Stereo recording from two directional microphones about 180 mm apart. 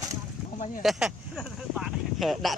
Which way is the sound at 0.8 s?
5° right (ahead or behind).